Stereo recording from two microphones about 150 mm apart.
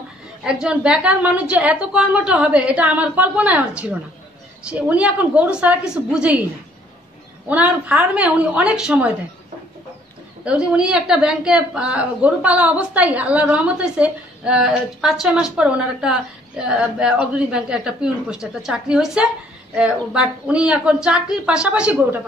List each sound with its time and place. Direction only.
0.4 s a woman's voice: 5° right (ahead or behind)
7.4 s a woman's voice: 10° right (ahead or behind)
10.4 s a woman's voice: 5° right (ahead or behind)